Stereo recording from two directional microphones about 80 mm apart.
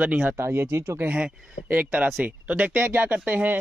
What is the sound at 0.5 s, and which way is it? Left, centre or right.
Speech, right.